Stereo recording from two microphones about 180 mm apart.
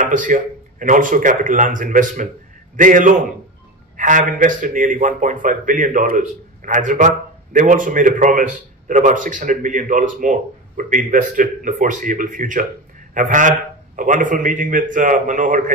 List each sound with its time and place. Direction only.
0.0 s a man's voice: 45° right (ahead or behind)